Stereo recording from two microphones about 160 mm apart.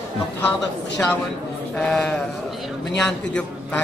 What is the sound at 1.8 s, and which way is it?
A man's voice, 5° left (ahead or behind).